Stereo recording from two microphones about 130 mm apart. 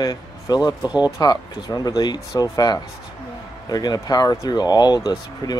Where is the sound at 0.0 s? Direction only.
30° left (ahead or behind).